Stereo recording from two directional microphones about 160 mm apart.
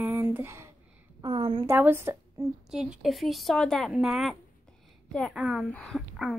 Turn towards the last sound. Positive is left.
turn(degrees=0)  # may be behind; listen again after turning